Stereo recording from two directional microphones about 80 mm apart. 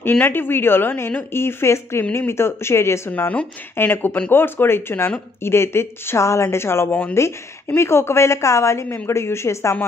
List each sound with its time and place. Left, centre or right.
0.2 s a woman's voice: left